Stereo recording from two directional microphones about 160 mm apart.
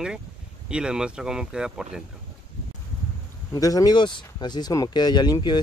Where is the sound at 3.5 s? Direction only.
20° left (ahead or behind).